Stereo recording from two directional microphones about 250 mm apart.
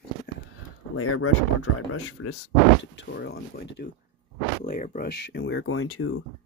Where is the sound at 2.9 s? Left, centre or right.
Left.